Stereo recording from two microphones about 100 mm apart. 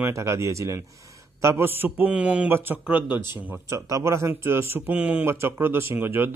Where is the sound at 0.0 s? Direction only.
30° right (ahead or behind).